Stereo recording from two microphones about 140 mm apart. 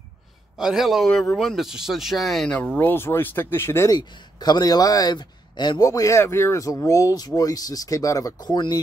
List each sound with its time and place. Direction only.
0.6 s a man's voice: 5° right (ahead or behind); by 8.7 s 30° left (ahead or behind)